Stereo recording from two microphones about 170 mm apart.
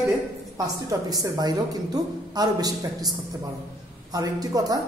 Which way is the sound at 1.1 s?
20° right (ahead or behind).